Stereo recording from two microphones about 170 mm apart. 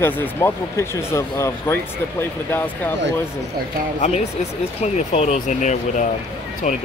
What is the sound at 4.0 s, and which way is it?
Speech, 45° left (ahead or behind).